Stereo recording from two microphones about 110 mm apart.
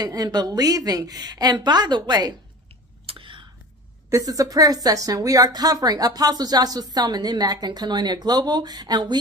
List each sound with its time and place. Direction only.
0.0 s a woman's voice: 35° right (ahead or behind)
3.1 s whispering: 50° right (ahead or behind)
4.1 s a woman's voice: 30° right (ahead or behind)